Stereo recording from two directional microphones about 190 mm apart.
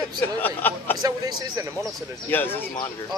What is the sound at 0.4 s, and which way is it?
Speech, 10° left (ahead or behind).